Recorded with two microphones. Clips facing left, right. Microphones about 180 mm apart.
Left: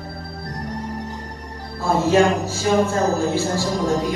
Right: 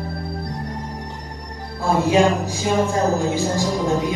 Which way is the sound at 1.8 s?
15° right (ahead or behind).